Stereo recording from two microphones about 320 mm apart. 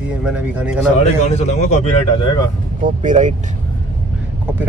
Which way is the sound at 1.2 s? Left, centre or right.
Left.